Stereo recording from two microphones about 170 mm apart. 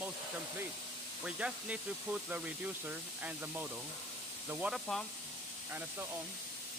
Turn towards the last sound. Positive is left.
turn(degrees=0)  # may be behind; listen again after turning